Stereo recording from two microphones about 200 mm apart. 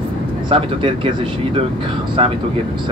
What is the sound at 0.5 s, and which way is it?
Speech, 25° right (ahead or behind).